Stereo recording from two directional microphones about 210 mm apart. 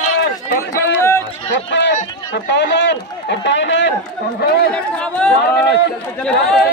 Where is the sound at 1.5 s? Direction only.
60° left (ahead or behind).